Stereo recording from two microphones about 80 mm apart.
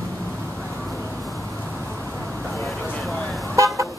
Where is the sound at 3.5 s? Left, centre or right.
Right.